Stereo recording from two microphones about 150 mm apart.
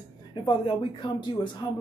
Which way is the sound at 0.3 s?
35° left (ahead or behind).